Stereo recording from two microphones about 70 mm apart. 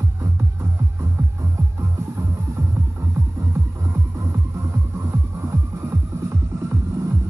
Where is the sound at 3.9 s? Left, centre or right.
Right.